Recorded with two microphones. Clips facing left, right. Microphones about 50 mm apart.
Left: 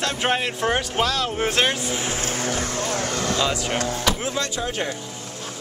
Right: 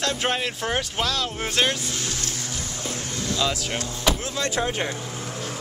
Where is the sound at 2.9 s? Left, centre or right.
Left.